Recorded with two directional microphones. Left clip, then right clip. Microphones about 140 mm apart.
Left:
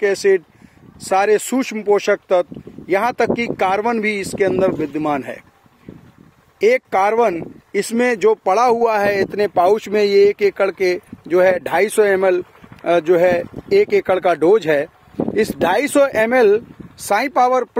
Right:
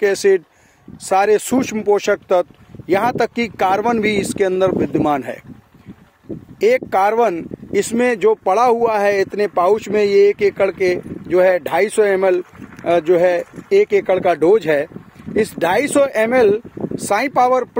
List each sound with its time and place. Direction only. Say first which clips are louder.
0.0 s speech: right 1 dB; 25° right (ahead or behind)
6.6 s speech: even; 20° right (ahead or behind)
7.8 s speech: even; 5° right (ahead or behind); by 14.3 s 20° left (ahead or behind)
14.3 s speech: even; 5° left (ahead or behind)